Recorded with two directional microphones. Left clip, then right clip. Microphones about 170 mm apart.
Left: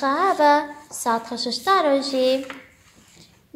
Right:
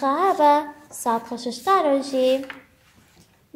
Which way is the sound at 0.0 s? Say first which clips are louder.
Even; 15° right (ahead or behind).